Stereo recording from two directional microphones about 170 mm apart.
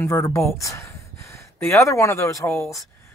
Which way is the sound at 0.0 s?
15° left (ahead or behind).